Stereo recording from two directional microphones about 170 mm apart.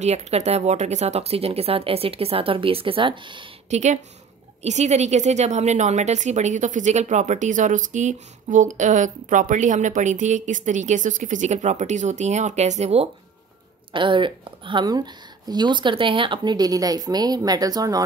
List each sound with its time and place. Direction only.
0.0 s speech: 40° right (ahead or behind)
3.7 s a woman's voice: 45° right (ahead or behind); by 18.0 s 20° right (ahead or behind)